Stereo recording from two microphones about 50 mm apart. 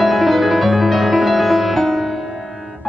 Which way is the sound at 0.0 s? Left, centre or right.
Centre.